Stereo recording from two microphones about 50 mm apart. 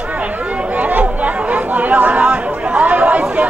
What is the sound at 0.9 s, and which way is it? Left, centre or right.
Chatter, right.